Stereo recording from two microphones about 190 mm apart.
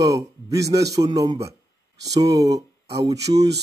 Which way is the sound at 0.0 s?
15° right (ahead or behind).